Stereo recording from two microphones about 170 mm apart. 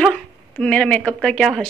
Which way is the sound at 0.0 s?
5° left (ahead or behind).